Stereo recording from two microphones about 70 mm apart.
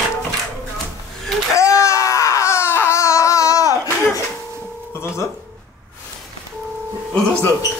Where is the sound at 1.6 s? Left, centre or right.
Left.